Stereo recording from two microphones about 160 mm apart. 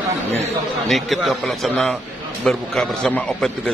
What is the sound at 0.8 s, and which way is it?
A man's voice, centre (ahead or behind).